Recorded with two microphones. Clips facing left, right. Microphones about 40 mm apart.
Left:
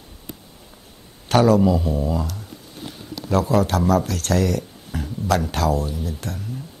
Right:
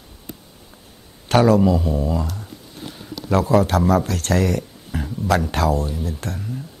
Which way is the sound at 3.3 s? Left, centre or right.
Centre.